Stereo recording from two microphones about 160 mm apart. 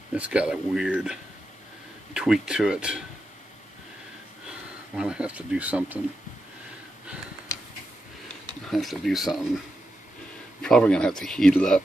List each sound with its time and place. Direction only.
0.1 s speech: 10° right (ahead or behind)
2.1 s speech: 5° right (ahead or behind)
4.5 s speech: 5° right (ahead or behind)
8.6 s speech: centre (ahead or behind)
10.6 s speech: 5° left (ahead or behind)